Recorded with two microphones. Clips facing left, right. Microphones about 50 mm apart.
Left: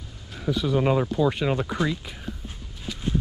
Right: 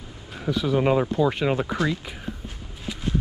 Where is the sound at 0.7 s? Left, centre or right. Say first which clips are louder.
Right 2 dB; centre.